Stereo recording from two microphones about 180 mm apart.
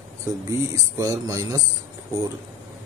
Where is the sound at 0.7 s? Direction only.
20° right (ahead or behind).